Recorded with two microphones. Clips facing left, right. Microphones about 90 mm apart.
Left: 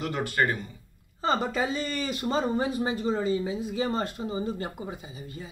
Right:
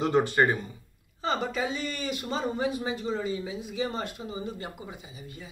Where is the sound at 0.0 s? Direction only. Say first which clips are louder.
Right 4 dB; 25° right (ahead or behind).